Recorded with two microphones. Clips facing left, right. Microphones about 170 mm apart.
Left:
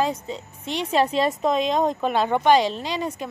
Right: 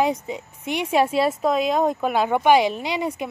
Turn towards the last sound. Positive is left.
turn(degrees=-10)  # may be behind; listen again after turning